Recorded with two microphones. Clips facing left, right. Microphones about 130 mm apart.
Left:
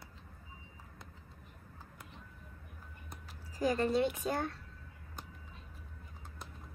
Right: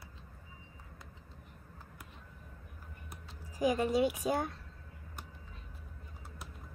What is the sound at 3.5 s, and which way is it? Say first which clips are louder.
Speech: right 1 dB; 15° right (ahead or behind).